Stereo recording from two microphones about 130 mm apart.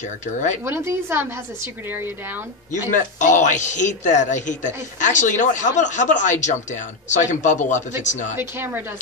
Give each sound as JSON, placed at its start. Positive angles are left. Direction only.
{"t": 0.7, "sound": "a woman's voice", "side_deg": -20}
{"t": 2.9, "sound": "speech", "side_deg": 70}
{"t": 8.4, "sound": "a woman's voice", "side_deg": -15}